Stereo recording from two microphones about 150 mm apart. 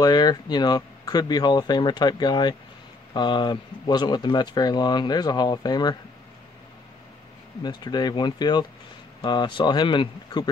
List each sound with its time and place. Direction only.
0.0 s speech: 25° left (ahead or behind)
7.6 s speech: 30° left (ahead or behind)